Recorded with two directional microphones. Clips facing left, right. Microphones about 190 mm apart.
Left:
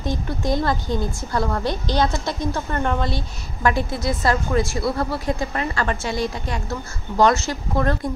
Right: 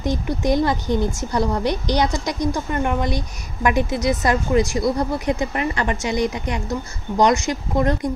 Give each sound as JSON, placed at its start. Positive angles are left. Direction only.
{"t": 0.0, "sound": "a woman's voice", "side_deg": -20}